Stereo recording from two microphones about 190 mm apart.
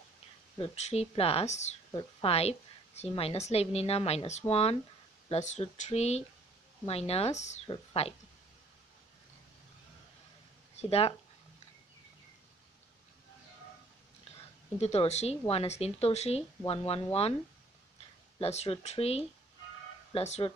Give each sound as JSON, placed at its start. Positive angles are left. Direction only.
{"t": 0.6, "sound": "a woman's voice", "side_deg": 35}
{"t": 10.8, "sound": "a woman's voice", "side_deg": 30}
{"t": 14.8, "sound": "a woman's voice", "side_deg": 35}
{"t": 18.4, "sound": "a woman's voice", "side_deg": 35}